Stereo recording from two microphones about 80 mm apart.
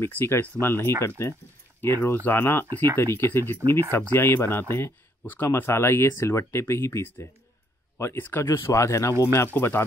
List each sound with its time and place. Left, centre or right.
0.0 s speech: left